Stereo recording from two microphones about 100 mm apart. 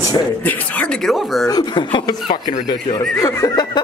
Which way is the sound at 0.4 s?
15° left (ahead or behind).